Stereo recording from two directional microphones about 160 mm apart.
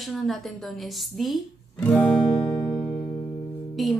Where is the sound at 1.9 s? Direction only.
10° left (ahead or behind).